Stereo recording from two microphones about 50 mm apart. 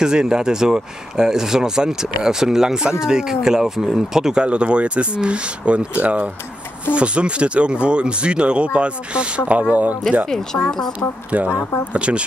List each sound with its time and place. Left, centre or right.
0.0 s speech: centre; by 9.9 s right
11.3 s speech: right